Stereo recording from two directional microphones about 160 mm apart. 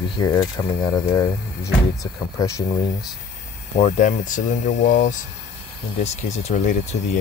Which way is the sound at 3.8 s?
50° left (ahead or behind).